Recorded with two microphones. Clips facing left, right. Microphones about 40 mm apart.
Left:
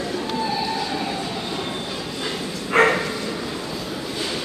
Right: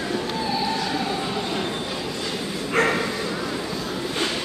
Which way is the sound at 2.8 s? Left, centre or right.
Left.